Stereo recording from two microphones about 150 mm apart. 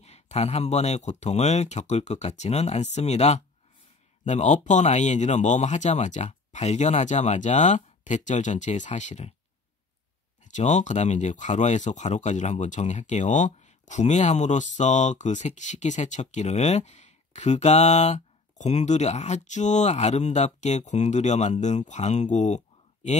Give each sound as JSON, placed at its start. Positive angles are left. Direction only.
{"t": 0.0, "sound": "speech", "side_deg": 45}
{"t": 10.4, "sound": "speech", "side_deg": 50}